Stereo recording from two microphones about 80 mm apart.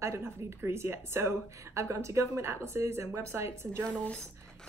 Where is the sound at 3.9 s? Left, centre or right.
Centre.